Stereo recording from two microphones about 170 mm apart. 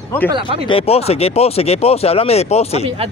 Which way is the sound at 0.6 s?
35° left (ahead or behind).